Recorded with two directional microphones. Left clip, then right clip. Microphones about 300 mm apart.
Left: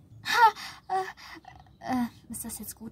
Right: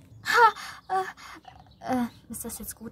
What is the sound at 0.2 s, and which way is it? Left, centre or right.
Gasp, centre.